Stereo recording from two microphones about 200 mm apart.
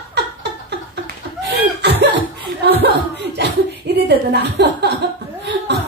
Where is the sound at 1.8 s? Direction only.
55° right (ahead or behind).